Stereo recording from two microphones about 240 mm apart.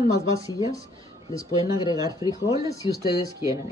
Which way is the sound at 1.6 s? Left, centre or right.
Centre.